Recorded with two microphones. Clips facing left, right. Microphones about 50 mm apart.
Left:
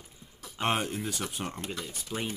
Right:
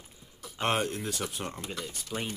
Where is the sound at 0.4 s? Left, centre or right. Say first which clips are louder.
Right 1 dB; centre.